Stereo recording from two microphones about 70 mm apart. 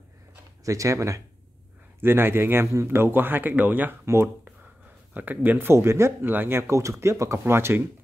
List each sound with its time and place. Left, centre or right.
0.7 s speech: right
2.0 s speech: right
4.0 s speech: right
5.1 s speech: right
6.2 s speech: right
6.7 s speech: right